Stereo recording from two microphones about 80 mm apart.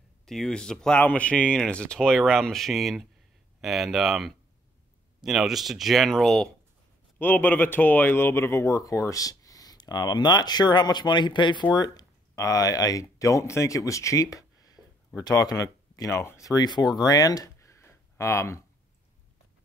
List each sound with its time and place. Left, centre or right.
0.2 s speech: centre
7.2 s speech: left
11.7 s speech: left
12.4 s speech: left
14.8 s a sound: right
15.2 s speech: left
17.6 s a sound: left